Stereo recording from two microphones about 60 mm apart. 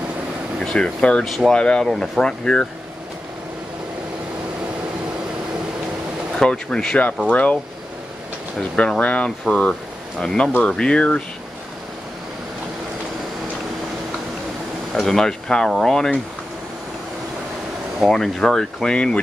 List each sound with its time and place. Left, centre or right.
0.6 s speech: centre
1.2 s speech: centre
1.5 s speech: centre
6.3 s speech: centre
7.2 s speech: left
8.7 s speech: centre
15.0 s speech: centre
18.1 s speech: centre